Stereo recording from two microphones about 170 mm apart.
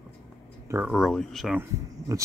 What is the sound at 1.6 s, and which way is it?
Speech, 20° right (ahead or behind).